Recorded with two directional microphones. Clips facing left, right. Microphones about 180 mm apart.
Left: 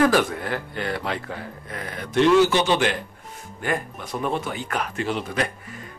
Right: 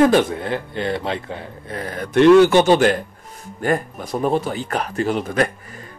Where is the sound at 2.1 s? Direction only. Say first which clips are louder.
Right 6 dB; 60° right (ahead or behind).